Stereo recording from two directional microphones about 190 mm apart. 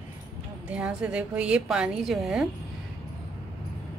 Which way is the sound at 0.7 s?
5° right (ahead or behind).